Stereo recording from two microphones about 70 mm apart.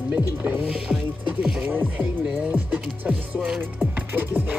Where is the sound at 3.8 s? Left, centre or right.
Right.